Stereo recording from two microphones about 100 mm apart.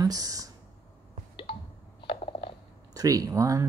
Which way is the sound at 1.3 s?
60° left (ahead or behind).